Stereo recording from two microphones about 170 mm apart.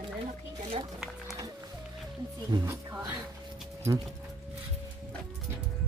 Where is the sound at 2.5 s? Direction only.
25° right (ahead or behind).